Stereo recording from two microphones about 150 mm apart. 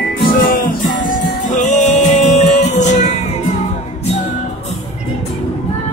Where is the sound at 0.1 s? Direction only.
75° left (ahead or behind).